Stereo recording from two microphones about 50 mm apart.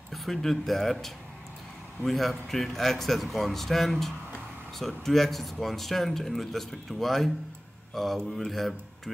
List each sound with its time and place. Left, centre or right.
0.1 s speech: centre